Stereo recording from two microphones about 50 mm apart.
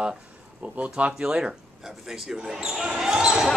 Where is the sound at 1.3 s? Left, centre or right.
Centre.